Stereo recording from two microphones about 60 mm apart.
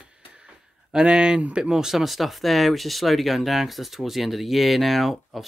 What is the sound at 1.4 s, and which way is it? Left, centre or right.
Speech, centre.